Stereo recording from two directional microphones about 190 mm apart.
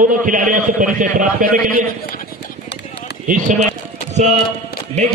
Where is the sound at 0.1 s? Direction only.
45° right (ahead or behind).